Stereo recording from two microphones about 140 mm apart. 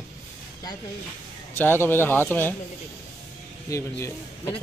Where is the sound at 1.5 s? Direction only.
15° left (ahead or behind).